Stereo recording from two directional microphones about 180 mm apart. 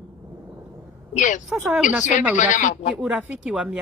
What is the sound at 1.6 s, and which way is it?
Speech, 5° right (ahead or behind).